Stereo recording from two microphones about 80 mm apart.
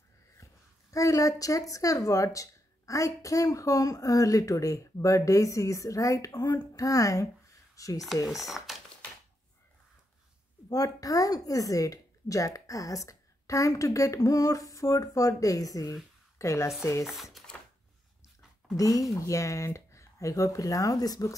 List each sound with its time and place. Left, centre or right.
0.9 s speech: left
7.7 s a sound: left
8.3 s speech: centre
10.7 s a woman's voice: left
17.0 s speech: centre
18.8 s speech: left